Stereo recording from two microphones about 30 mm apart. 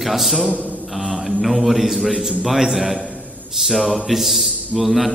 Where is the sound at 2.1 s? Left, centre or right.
Centre.